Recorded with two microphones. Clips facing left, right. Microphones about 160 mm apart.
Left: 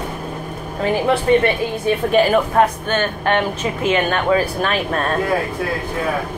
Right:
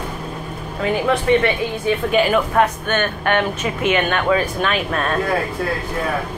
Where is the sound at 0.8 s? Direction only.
35° left (ahead or behind).